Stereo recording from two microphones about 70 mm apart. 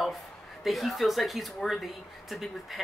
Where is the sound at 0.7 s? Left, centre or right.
Centre.